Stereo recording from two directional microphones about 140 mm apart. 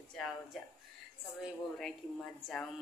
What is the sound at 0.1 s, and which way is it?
Speech, centre (ahead or behind).